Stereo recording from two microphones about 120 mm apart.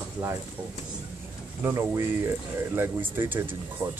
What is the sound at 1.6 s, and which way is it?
Speech, 25° right (ahead or behind).